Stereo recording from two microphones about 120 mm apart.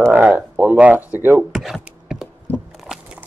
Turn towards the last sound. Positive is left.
turn(degrees=-5)  # may be behind; listen again after turning